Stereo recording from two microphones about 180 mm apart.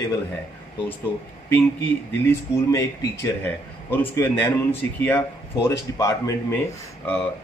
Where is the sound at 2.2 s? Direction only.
15° left (ahead or behind).